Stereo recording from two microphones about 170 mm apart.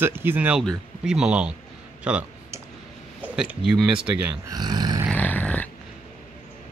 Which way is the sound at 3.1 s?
10° right (ahead or behind).